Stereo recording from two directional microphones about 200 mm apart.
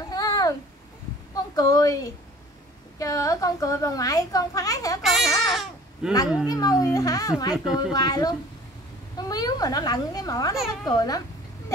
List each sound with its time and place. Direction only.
0.1 s a sound: 20° left (ahead or behind)
3.0 s a child's voice: 15° left (ahead or behind)
5.0 s speech: centre (ahead or behind)
5.5 s babbling: centre (ahead or behind)
6.5 s a child's voice: 20° left (ahead or behind)